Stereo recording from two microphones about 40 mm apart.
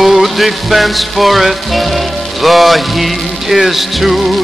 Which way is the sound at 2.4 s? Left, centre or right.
Centre.